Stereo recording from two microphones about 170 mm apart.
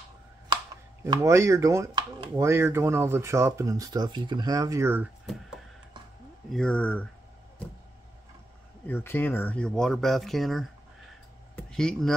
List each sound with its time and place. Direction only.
1.0 s speech: 20° right (ahead or behind)
6.5 s speech: 5° left (ahead or behind)
8.8 s speech: 10° left (ahead or behind)